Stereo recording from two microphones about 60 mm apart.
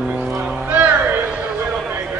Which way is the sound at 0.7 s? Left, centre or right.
Right.